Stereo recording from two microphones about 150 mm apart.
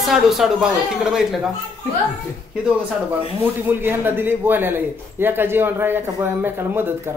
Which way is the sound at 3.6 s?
15° right (ahead or behind).